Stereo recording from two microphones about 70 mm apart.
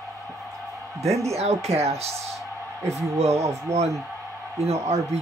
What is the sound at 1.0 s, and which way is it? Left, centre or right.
Speech, right.